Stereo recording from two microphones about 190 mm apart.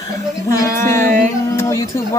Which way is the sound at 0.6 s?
15° left (ahead or behind).